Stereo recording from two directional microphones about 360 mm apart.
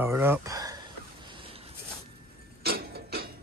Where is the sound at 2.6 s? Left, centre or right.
Right.